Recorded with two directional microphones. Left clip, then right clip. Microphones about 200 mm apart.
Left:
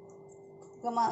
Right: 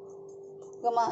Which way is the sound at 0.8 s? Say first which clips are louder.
Right 3 dB; 10° right (ahead or behind).